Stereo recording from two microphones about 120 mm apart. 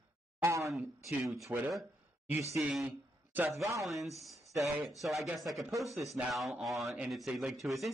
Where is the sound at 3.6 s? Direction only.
25° right (ahead or behind).